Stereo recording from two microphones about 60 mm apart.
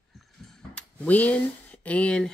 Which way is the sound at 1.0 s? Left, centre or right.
Left.